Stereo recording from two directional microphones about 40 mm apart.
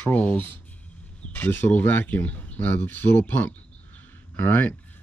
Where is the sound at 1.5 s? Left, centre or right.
Left.